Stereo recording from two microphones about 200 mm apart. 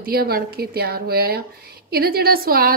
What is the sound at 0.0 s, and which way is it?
A woman's voice, 50° right (ahead or behind).